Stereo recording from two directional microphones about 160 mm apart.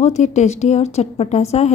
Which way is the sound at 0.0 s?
45° left (ahead or behind).